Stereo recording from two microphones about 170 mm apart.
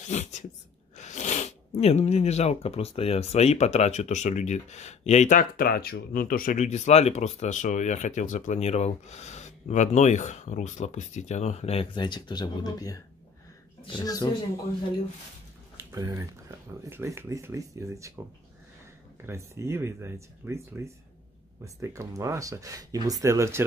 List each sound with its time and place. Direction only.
0.1 s speech: 45° left (ahead or behind); by 14.3 s 25° left (ahead or behind)
15.9 s speech: 15° right (ahead or behind)
19.2 s speech: 15° right (ahead or behind)